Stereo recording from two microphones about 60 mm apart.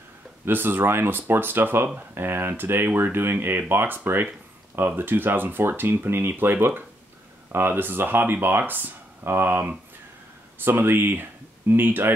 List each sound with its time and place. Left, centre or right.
0.5 s speech: right